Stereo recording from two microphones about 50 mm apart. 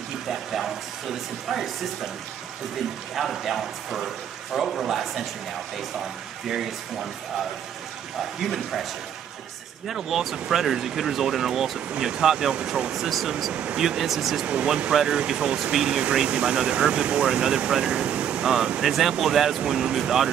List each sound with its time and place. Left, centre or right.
0.3 s a sound: centre
3.2 s a man's voice: centre
6.4 s speech: centre
8.4 s a man's voice: centre
9.8 s a man's voice: centre
12.9 s a man's voice: centre
13.5 s speech: centre
13.8 s a man's voice: centre
14.4 s speech: right
18.8 s a man's voice: centre